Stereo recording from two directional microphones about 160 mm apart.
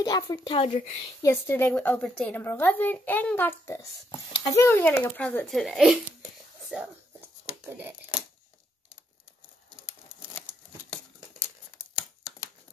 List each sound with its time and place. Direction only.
0.0 s speech: 25° left (ahead or behind)
1.2 s a woman's voice: 15° left (ahead or behind); by 5.9 s centre (ahead or behind)
6.7 s a sound: 10° right (ahead or behind)
11.9 s crumpling: 25° left (ahead or behind)